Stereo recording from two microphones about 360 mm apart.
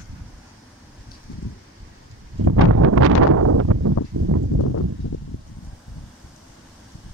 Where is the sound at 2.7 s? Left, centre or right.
Right.